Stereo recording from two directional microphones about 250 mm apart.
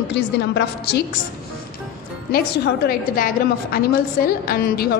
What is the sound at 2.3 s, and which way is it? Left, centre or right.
A woman's voice, left.